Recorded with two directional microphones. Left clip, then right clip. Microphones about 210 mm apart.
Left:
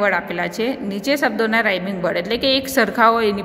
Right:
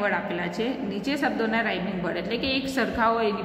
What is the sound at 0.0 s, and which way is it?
A woman's voice, 45° left (ahead or behind).